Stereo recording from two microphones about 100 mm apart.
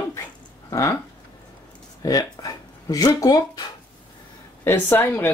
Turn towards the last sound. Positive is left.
turn(degrees=20)  # may be behind; listen again after turning